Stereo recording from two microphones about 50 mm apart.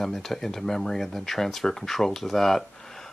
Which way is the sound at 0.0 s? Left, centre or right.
Centre.